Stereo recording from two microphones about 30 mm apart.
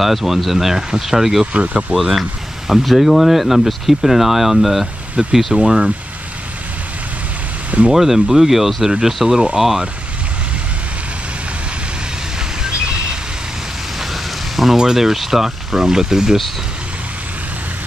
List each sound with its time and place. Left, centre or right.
0.0 s speech: centre
1.5 s speech: right
2.0 s speech: centre
2.7 s speech: centre
5.2 s speech: right
7.9 s speech: centre
14.8 s speech: centre